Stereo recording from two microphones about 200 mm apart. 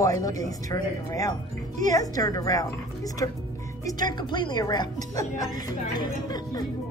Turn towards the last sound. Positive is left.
turn(degrees=20)  # may be behind; listen again after turning